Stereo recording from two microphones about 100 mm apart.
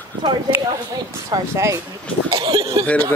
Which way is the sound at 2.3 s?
60° right (ahead or behind).